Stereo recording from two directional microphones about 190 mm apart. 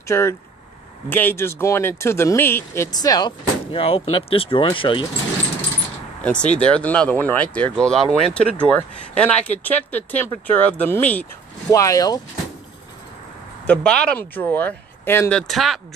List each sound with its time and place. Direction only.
0.1 s speech: 15° left (ahead or behind)
6.2 s speech: 5° left (ahead or behind)
13.7 s speech: 5° left (ahead or behind)